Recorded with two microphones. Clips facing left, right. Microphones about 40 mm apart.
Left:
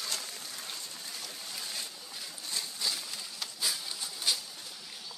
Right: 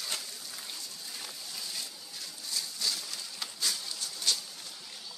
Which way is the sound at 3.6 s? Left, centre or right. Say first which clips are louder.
Even; centre.